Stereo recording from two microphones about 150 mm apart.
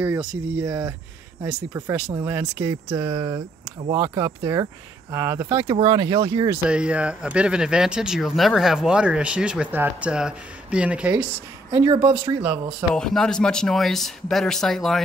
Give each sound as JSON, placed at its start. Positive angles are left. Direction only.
{"t": 0.0, "sound": "speech", "side_deg": -10}
{"t": 2.6, "sound": "speech", "side_deg": -30}
{"t": 5.6, "sound": "speech", "side_deg": -30}
{"t": 6.7, "sound": "speech", "side_deg": -5}
{"t": 11.7, "sound": "speech", "side_deg": -35}
{"t": 12.4, "sound": "speech", "side_deg": -10}
{"t": 12.9, "sound": "speech", "side_deg": 5}